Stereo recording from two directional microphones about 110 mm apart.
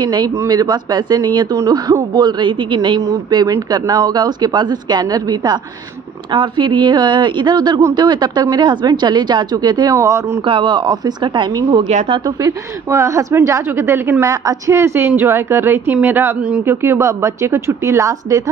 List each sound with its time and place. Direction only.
0.0 s speech: 40° right (ahead or behind)
3.1 s speech: 35° right (ahead or behind)
9.9 s a woman's voice: 25° right (ahead or behind)
10.4 s speech: 45° right (ahead or behind)
12.4 s a woman's voice: 30° right (ahead or behind)